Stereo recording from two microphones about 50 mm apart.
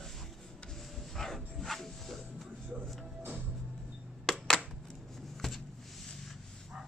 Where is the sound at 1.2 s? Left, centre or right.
Centre.